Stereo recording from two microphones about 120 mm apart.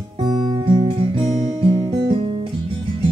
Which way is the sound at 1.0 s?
55° right (ahead or behind).